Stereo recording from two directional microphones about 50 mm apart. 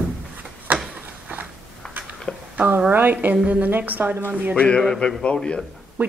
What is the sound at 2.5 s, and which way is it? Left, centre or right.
A woman's voice, right.